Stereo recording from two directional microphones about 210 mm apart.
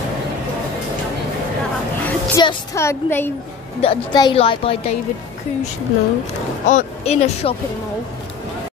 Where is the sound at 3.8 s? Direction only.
25° left (ahead or behind).